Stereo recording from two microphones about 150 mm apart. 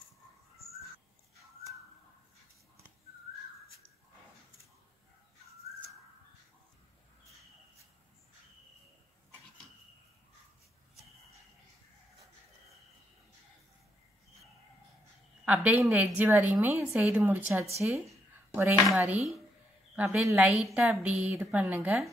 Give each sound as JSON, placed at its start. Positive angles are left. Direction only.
{"t": 15.4, "sound": "a woman's voice", "side_deg": -10}
{"t": 20.3, "sound": "a woman's voice", "side_deg": 0}